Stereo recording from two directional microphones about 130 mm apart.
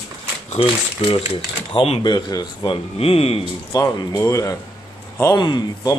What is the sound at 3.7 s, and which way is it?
Speech, 25° left (ahead or behind).